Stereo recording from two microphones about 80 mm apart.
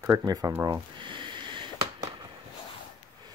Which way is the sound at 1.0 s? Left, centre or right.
Right.